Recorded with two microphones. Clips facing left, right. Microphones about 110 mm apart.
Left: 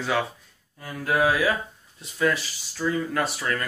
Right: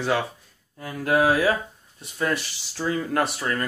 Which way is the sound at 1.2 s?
30° right (ahead or behind).